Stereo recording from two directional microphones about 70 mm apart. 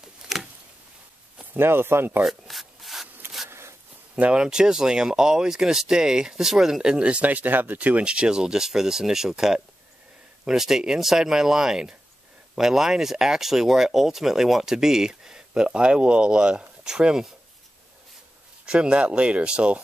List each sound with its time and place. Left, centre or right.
0.3 s a sound: centre
1.4 s speech: right
2.2 s rub: centre
3.4 s zipper: right
4.1 s speech: centre
18.7 s speech: centre